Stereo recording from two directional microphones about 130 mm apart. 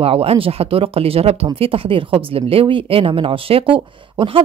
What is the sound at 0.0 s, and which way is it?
Speech, 45° right (ahead or behind).